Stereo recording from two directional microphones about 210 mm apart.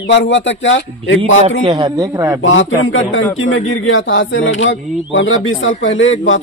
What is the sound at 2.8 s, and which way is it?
Speech, 70° left (ahead or behind).